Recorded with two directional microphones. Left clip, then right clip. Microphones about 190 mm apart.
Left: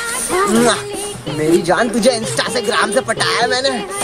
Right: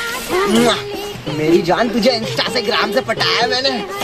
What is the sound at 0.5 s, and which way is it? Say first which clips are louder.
Speech: right 1 dB; 5° left (ahead or behind).